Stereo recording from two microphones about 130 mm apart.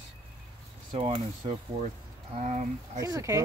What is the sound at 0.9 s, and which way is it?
Speech, 50° right (ahead or behind).